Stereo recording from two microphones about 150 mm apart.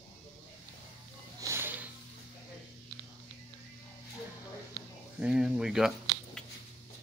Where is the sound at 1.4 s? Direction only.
15° right (ahead or behind).